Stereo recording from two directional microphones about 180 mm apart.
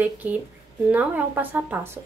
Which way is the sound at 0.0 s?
10° right (ahead or behind).